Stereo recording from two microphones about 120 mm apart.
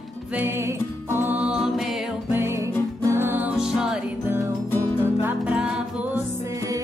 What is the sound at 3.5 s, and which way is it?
Music, 5° right (ahead or behind).